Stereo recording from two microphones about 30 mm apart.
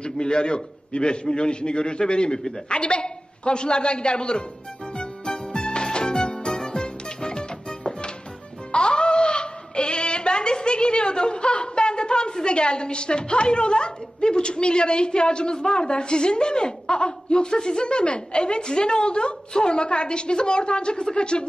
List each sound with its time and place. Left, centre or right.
0.0 s a woman's voice: left
4.9 s music: left
8.7 s a sound: left
12.4 s a woman's voice: left